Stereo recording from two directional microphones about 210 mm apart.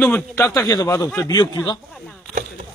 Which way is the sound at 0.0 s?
10° left (ahead or behind).